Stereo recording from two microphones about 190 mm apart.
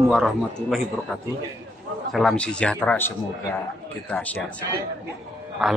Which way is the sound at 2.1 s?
5° left (ahead or behind).